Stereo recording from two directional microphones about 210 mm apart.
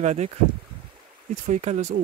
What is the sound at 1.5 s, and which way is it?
Speech, 35° right (ahead or behind).